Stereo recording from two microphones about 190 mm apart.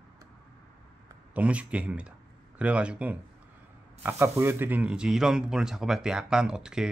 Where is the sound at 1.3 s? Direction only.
5° right (ahead or behind).